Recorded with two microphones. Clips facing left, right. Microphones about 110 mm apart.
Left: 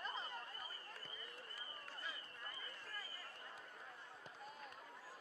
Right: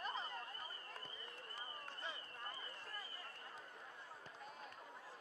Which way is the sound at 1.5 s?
25° right (ahead or behind).